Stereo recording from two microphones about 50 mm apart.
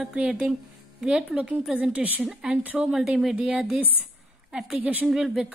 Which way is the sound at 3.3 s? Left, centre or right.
Right.